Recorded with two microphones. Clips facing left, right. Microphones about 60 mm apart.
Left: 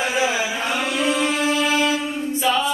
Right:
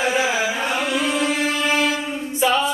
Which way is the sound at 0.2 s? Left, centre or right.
Right.